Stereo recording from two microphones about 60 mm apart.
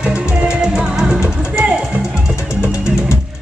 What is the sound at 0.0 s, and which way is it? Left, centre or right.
Music, centre.